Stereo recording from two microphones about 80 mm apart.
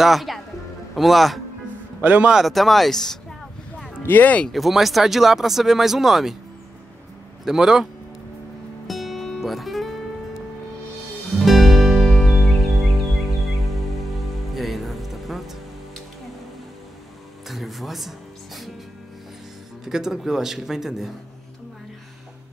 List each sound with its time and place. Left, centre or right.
0.0 s speech: centre
2.0 s a man's voice: centre
2.3 s speech: centre
3.8 s speech: left
4.5 s speech: centre
7.4 s a man's voice: centre
8.8 s music: centre
11.3 s music: centre
14.5 s music: centre
17.5 s music: centre
19.8 s speech: centre